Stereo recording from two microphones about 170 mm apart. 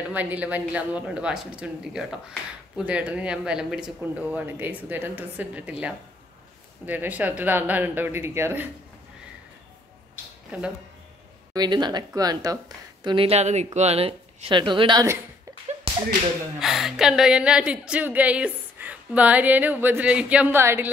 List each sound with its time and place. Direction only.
0.1 s a woman's voice: 10° right (ahead or behind)
11.5 s speech: 25° right (ahead or behind)
16.5 s a woman's voice: centre (ahead or behind)